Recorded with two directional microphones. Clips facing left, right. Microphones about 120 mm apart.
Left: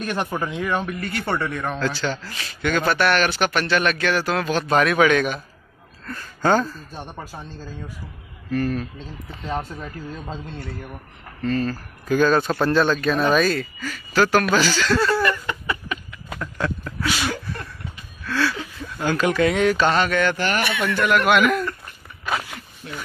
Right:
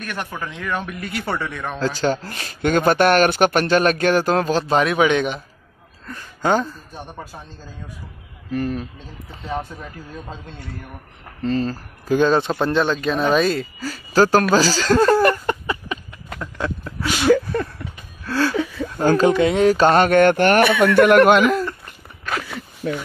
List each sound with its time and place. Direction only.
0.0 s speech: 25° left (ahead or behind)
0.7 s speech: centre (ahead or behind)
1.8 s speech: 45° right (ahead or behind); by 6.8 s 15° right (ahead or behind)
8.5 s speech: 20° right (ahead or behind)
11.4 s speech: 25° right (ahead or behind); by 15.5 s 45° right (ahead or behind)
16.3 s a sound: 20° right (ahead or behind)
18.2 s speech: 40° right (ahead or behind)
19.3 s speech: 30° right (ahead or behind); by 21.3 s 60° right (ahead or behind)
21.3 s speech: 30° right (ahead or behind)